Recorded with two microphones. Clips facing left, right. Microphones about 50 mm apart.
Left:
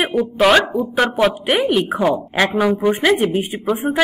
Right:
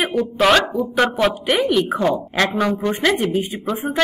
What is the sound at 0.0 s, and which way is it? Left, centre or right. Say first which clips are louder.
Speech: left 2 dB; centre.